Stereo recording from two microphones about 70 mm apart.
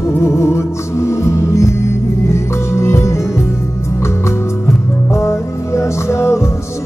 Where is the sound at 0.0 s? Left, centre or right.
Left.